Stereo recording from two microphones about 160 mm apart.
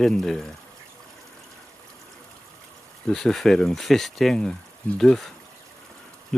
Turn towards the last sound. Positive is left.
turn(degrees=0)  # may be behind; listen again after turning